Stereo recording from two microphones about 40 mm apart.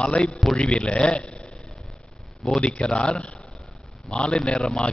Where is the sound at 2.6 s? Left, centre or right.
Left.